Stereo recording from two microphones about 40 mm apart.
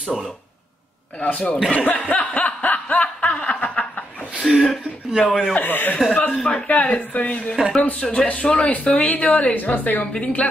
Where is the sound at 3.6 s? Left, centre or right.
Left.